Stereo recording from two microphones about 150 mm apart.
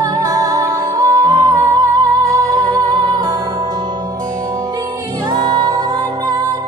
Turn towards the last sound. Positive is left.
turn(degrees=-30)  # may be behind; listen again after turning